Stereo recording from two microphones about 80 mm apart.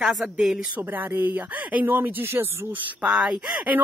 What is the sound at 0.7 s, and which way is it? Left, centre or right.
Speech, right.